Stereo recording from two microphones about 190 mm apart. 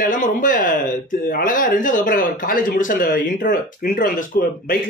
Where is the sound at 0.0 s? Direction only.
45° left (ahead or behind).